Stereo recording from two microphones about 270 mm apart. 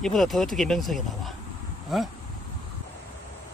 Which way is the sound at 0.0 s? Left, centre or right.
Centre.